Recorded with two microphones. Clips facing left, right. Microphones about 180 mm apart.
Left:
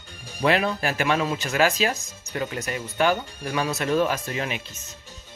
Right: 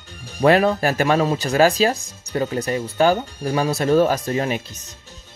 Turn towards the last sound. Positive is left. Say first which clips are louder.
# right 7 dB
turn(degrees=-40)  # may be behind; listen again after turning